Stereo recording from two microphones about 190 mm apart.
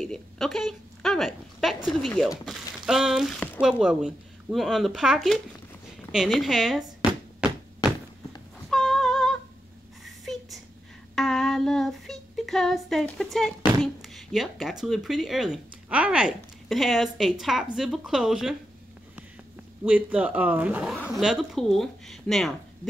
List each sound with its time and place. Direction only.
0.0 s a sound: centre (ahead or behind)
1.9 s speech: centre (ahead or behind)
8.6 s a sound: centre (ahead or behind)
11.1 s female singing: centre (ahead or behind)
14.0 s speech: centre (ahead or behind)
19.8 s speech: 5° right (ahead or behind)